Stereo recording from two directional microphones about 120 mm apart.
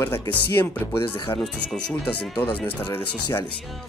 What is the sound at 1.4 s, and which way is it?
Speech, 5° left (ahead or behind).